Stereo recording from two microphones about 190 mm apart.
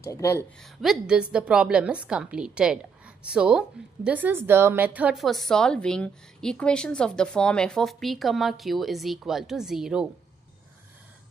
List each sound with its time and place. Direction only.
0.0 s speech: 15° left (ahead or behind)
0.6 s a woman's voice: centre (ahead or behind)